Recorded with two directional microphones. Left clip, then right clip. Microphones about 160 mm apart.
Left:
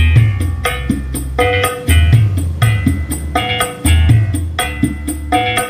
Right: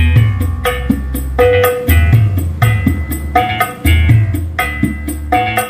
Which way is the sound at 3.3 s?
20° left (ahead or behind).